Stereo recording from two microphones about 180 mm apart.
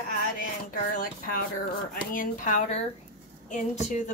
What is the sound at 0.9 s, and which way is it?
A woman's voice, 50° left (ahead or behind).